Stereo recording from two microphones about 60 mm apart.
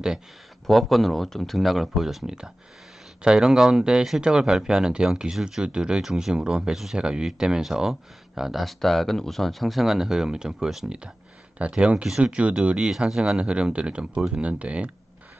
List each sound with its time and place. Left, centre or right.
0.7 s speech: centre
11.5 s speech: centre